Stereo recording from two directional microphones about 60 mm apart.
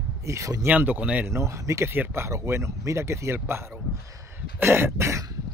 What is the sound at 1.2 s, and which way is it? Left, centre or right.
Speech, right.